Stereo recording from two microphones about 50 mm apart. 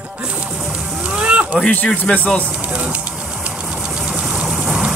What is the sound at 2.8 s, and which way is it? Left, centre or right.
Hiss, right.